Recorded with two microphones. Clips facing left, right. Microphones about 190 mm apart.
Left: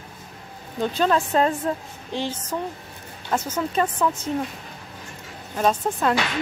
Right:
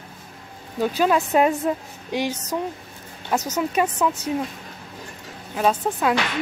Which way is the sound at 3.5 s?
10° right (ahead or behind).